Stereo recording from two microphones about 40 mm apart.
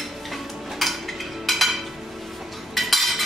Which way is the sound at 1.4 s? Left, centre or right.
Centre.